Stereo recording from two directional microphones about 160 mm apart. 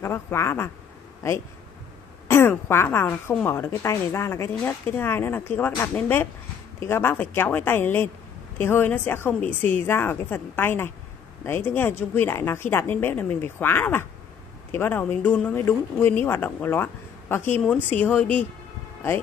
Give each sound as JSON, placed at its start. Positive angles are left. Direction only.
{"t": 0.0, "sound": "a woman's voice", "side_deg": 15}
{"t": 2.2, "sound": "a woman's voice", "side_deg": 15}